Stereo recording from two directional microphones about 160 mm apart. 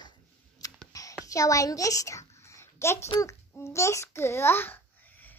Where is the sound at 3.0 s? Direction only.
20° left (ahead or behind).